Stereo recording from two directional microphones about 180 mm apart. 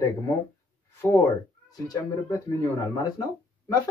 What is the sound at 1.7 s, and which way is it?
Speech, 20° left (ahead or behind).